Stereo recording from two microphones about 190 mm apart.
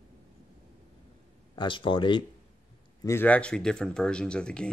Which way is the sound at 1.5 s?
25° left (ahead or behind).